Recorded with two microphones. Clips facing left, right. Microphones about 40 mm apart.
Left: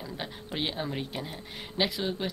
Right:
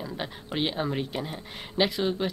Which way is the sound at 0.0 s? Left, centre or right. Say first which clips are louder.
Right 3 dB; centre.